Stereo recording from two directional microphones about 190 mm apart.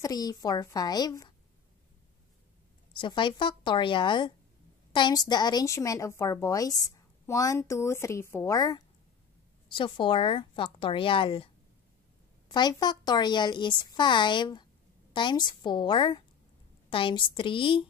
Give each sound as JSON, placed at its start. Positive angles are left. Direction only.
{"t": 0.0, "sound": "a woman's voice", "side_deg": 20}
{"t": 3.0, "sound": "a woman's voice", "side_deg": 25}